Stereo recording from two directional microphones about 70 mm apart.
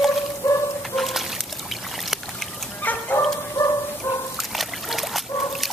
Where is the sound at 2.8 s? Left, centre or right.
Left.